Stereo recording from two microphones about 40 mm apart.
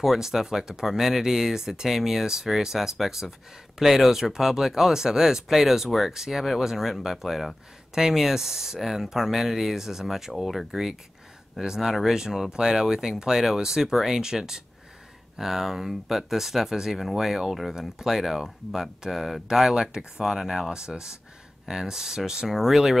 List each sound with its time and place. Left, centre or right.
0.0 s speech: centre
19.8 s speech: centre